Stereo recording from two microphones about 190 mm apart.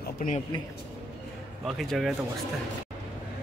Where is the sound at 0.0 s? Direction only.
45° left (ahead or behind).